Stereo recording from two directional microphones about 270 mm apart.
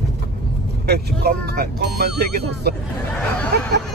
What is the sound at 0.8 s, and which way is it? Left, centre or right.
Speech, right.